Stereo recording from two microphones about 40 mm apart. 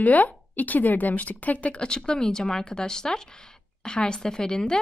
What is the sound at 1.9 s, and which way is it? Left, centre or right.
A woman's voice, centre.